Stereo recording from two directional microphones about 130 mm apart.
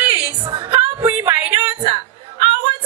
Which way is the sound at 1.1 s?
15° right (ahead or behind).